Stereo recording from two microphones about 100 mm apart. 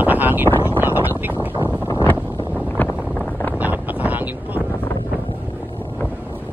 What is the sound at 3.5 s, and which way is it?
Wind noise, 15° right (ahead or behind).